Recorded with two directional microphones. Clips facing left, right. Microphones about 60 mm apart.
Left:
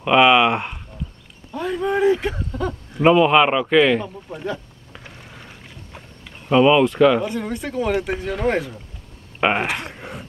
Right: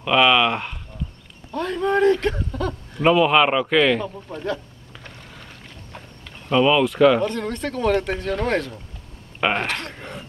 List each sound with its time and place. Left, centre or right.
0.0 s speech: centre
4.3 s rowboat: centre
6.8 s speech: centre